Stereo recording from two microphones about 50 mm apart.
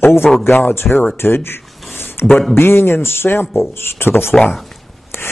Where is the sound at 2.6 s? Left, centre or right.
Left.